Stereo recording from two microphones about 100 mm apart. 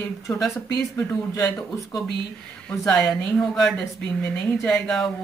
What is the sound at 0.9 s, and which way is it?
Speech, 35° left (ahead or behind).